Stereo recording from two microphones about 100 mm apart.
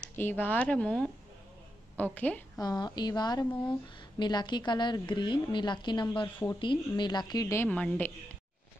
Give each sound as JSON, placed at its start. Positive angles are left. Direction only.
{"t": 0.2, "sound": "speech", "side_deg": 20}
{"t": 2.1, "sound": "speech", "side_deg": 15}
{"t": 2.6, "sound": "a woman's voice", "side_deg": 45}
{"t": 7.4, "sound": "a woman's voice", "side_deg": 25}
{"t": 7.7, "sound": "speech", "side_deg": 15}